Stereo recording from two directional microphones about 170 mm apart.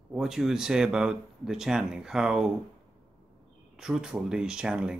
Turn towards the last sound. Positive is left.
turn(degrees=-5)  # may be behind; listen again after turning